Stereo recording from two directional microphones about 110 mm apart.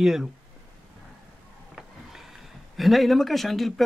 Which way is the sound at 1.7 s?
5° right (ahead or behind).